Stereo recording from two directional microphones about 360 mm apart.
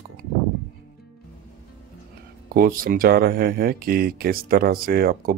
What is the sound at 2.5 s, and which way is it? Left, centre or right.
Speech, right.